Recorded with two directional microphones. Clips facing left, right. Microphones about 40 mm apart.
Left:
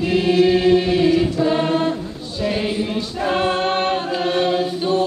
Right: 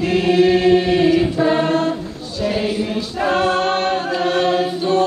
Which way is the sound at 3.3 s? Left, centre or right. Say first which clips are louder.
Right 2 dB; centre.